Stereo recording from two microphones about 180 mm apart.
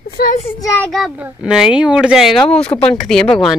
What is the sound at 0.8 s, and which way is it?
A child's voice, centre (ahead or behind).